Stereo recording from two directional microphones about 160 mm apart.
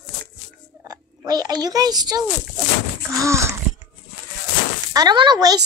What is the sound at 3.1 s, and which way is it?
Wail, 20° right (ahead or behind).